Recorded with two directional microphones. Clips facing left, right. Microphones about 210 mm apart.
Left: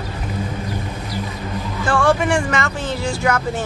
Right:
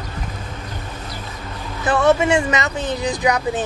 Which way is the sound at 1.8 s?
20° right (ahead or behind).